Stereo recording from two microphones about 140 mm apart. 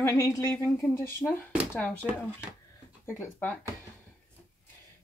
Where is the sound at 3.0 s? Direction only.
15° left (ahead or behind).